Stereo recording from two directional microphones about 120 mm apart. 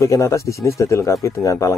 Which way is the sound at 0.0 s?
25° left (ahead or behind).